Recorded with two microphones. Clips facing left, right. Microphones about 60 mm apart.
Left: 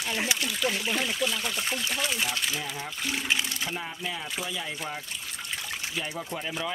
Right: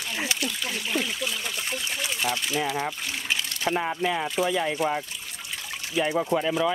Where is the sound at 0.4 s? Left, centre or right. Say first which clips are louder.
Left 1 dB; centre.